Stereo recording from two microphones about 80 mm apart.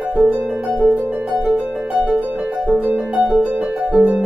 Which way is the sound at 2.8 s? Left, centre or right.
Centre.